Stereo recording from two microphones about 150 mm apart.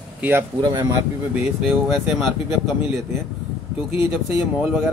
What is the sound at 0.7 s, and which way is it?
Speech, 20° right (ahead or behind).